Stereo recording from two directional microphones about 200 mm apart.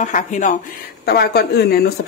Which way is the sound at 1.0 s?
55° left (ahead or behind).